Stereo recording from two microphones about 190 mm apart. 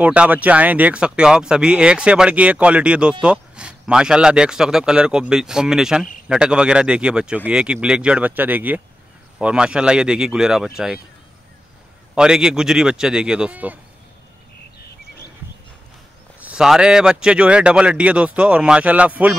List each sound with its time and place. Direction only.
0.0 s speech: 5° right (ahead or behind)
12.2 s speech: 5° right (ahead or behind)
16.3 s speech: 5° right (ahead or behind)